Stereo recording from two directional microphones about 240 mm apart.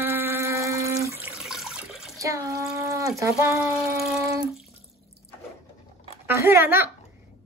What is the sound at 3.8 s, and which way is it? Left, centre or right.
Speech, centre.